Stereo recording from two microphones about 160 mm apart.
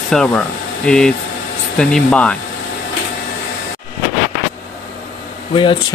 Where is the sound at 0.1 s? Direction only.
5° left (ahead or behind).